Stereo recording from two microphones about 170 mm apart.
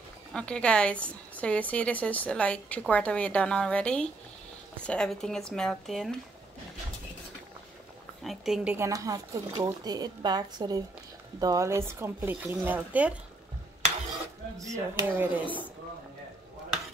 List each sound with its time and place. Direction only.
0.3 s speech: 5° left (ahead or behind)
8.2 s speech: centre (ahead or behind)
8.7 s speech: 20° right (ahead or behind)
14.6 s speech: 20° right (ahead or behind)